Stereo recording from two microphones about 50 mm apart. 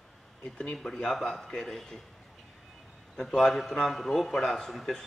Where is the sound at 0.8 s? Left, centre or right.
Centre.